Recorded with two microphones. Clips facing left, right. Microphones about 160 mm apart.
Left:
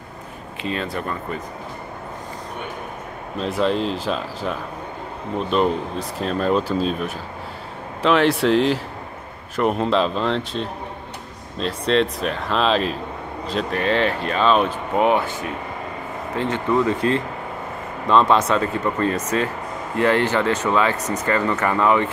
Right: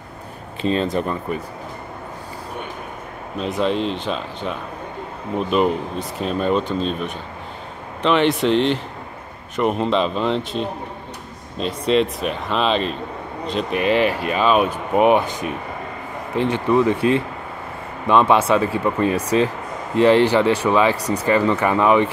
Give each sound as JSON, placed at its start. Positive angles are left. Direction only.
{"t": 0.6, "sound": "speech", "side_deg": -30}
{"t": 3.3, "sound": "speech", "side_deg": 0}
{"t": 13.7, "sound": "speech", "side_deg": -10}